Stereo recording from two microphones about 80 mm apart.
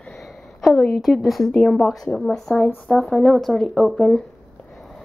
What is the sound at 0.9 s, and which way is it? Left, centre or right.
A woman's voice, centre.